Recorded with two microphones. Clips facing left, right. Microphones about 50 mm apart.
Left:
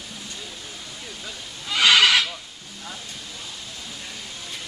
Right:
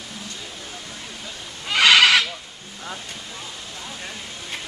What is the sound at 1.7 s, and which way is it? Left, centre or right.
Goose, right.